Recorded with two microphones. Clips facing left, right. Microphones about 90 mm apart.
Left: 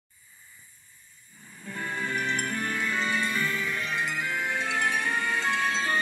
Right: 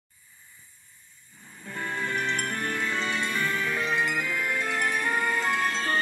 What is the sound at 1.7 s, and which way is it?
Music, 5° left (ahead or behind).